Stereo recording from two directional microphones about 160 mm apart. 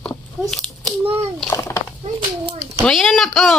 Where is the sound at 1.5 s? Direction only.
15° left (ahead or behind).